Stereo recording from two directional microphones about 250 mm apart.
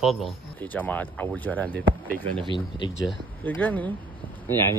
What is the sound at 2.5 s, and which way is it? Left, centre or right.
Speech, centre.